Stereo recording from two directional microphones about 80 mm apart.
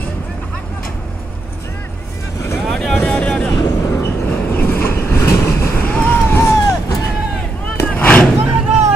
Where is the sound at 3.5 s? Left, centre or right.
Left.